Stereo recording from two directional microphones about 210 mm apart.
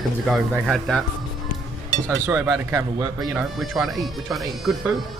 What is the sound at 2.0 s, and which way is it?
Speech, 10° right (ahead or behind).